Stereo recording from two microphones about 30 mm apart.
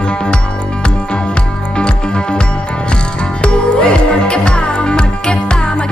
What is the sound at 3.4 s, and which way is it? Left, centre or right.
Music, left.